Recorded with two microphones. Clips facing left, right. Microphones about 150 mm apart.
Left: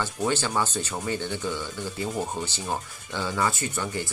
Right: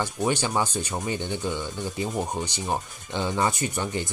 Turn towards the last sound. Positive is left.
turn(degrees=-20)  # may be behind; listen again after turning